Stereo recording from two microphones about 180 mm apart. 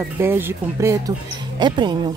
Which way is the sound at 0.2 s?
10° right (ahead or behind).